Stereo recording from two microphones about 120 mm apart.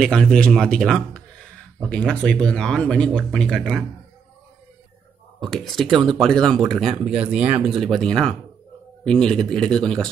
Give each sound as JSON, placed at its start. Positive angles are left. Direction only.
{"t": 0.0, "sound": "speech", "side_deg": 5}
{"t": 5.4, "sound": "speech", "side_deg": 5}